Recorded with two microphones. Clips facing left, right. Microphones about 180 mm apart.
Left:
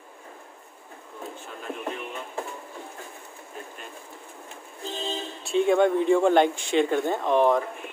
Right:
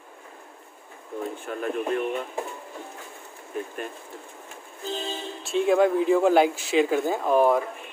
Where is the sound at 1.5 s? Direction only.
65° right (ahead or behind).